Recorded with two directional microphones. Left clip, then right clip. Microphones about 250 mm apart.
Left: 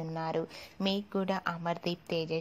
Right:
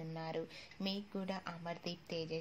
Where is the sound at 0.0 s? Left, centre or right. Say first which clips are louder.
Left 9 dB; left.